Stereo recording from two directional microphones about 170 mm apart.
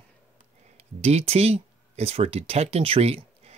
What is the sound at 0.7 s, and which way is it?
Speech, 40° right (ahead or behind).